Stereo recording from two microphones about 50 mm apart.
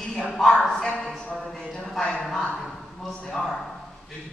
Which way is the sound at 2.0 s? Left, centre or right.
Centre.